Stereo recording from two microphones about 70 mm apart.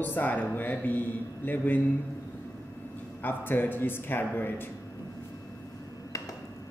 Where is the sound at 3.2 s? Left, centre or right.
Left.